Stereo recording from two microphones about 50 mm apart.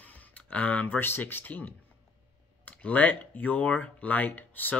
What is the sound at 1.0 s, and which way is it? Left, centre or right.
Speech, left.